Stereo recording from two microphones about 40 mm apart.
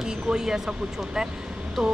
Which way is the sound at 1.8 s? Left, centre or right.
Centre.